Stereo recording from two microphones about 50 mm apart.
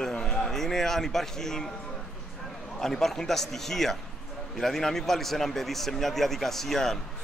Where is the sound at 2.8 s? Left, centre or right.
Centre.